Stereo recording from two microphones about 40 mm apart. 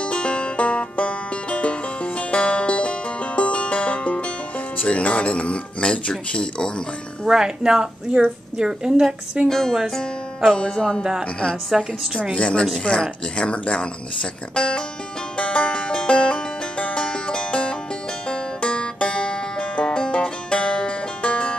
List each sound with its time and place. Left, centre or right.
0.0 s music: left
4.8 s speech: left
7.2 s a woman's voice: centre
9.5 s speech: centre
9.9 s music: centre
11.7 s a woman's voice: centre
12.2 s speech: left
15.3 s music: left